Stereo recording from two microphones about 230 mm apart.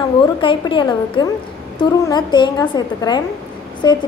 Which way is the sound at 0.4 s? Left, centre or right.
Left.